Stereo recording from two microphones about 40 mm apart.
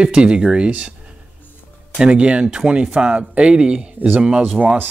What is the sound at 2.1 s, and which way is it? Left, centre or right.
Speech, right.